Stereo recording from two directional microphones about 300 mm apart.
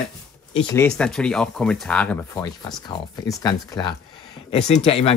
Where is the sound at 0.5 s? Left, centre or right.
Centre.